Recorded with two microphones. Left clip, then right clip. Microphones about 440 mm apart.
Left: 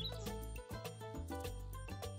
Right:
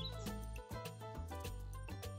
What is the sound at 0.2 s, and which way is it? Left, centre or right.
Music, left.